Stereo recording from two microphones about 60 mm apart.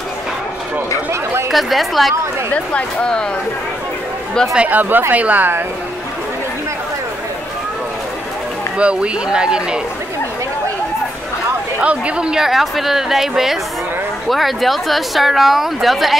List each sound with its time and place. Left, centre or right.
1.5 s speech: centre
2.5 s speech: centre
4.6 s speech: right
8.7 s speech: centre
11.8 s speech: centre
14.3 s speech: centre